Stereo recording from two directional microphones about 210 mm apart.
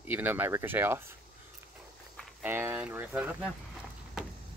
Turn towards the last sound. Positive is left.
turn(degrees=-5)  # may be behind; listen again after turning